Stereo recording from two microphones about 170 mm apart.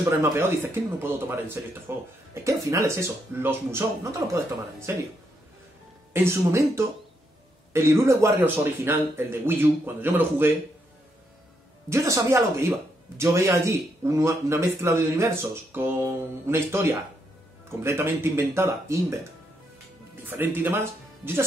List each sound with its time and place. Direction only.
0.2 s speech: 15° right (ahead or behind)
6.1 s speech: 15° right (ahead or behind)
11.9 s speech: 15° right (ahead or behind)
20.2 s speech: 10° right (ahead or behind)